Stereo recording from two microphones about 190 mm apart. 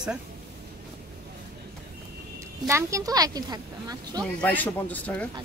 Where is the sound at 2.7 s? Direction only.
15° right (ahead or behind).